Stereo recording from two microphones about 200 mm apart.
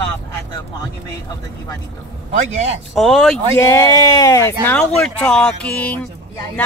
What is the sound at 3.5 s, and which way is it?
Speech, 15° left (ahead or behind).